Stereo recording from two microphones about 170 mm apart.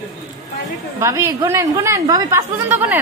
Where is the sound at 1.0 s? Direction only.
15° right (ahead or behind).